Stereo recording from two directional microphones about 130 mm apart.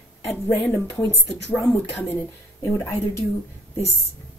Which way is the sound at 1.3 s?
Centre (ahead or behind).